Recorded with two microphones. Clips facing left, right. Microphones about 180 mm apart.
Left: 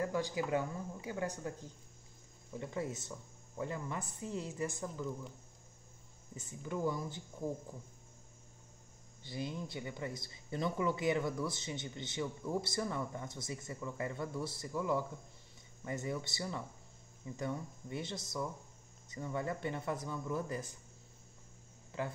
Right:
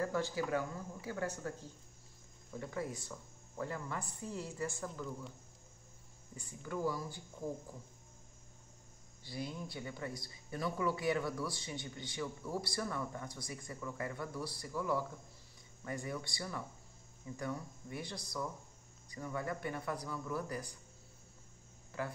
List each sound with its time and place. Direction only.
0.0 s speech: 15° left (ahead or behind)
6.3 s speech: 20° left (ahead or behind)
9.2 s speech: 20° left (ahead or behind)
21.9 s speech: 20° left (ahead or behind)